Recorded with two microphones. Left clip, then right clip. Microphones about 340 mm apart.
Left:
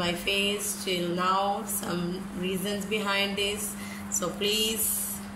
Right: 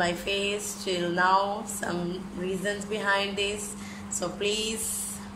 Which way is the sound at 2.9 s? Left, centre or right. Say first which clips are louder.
Even; right.